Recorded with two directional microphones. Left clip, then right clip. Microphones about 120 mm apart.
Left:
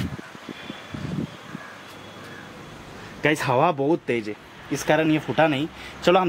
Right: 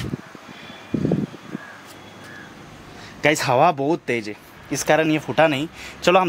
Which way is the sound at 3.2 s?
35° right (ahead or behind).